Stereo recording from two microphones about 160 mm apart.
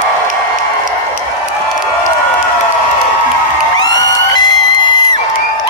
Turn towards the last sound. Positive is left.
turn(degrees=25)  # may be behind; listen again after turning